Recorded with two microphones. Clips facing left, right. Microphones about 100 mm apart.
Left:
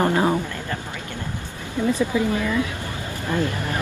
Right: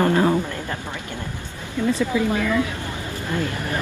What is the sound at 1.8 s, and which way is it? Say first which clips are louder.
Speech: even; 15° left (ahead or behind).